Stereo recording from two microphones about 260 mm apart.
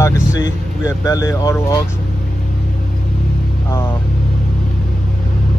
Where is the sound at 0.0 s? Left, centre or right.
Centre.